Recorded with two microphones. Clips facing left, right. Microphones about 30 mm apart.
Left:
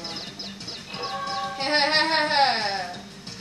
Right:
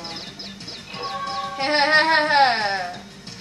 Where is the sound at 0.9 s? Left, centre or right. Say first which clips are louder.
Right 2 dB; centre.